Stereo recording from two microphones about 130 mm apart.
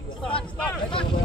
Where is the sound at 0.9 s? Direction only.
40° left (ahead or behind).